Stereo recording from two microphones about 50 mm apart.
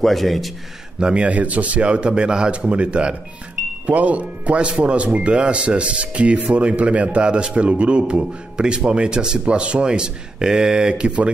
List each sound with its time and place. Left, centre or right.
0.0 s a man's voice: centre
0.9 s a man's voice: right